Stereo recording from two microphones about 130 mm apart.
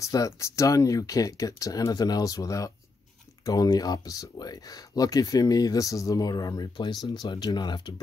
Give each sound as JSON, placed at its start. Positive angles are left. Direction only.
{"t": 0.0, "sound": "speech", "side_deg": 25}